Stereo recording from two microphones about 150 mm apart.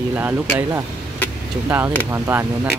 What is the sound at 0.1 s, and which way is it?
Speech, 10° right (ahead or behind).